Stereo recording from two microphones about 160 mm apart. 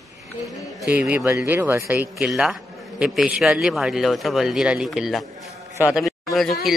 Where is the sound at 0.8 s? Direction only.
10° right (ahead or behind).